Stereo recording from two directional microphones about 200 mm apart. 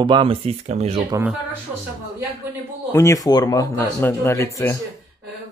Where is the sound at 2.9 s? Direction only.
15° left (ahead or behind).